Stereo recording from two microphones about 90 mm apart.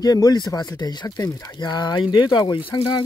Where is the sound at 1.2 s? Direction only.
40° left (ahead or behind).